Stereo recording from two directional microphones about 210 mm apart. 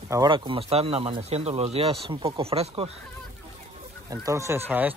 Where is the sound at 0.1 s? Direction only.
20° right (ahead or behind).